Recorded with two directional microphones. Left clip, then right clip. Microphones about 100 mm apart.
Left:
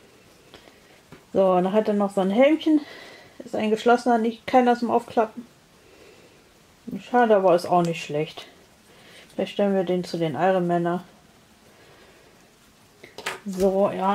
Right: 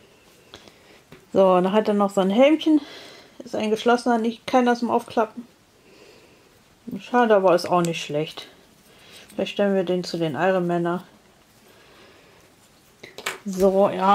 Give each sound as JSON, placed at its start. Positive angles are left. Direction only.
{"t": 1.3, "sound": "speech", "side_deg": -45}
{"t": 7.0, "sound": "speech", "side_deg": -35}
{"t": 13.0, "sound": "a sound", "side_deg": -45}
{"t": 13.6, "sound": "speech", "side_deg": -45}